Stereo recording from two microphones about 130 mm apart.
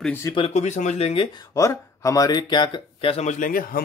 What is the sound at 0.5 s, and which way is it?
Speech, 60° left (ahead or behind).